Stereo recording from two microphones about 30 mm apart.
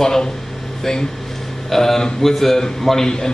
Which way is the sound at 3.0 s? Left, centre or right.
Left.